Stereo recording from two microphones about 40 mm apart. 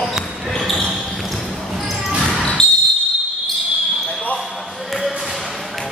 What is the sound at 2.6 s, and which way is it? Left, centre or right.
Basketball bounce, centre.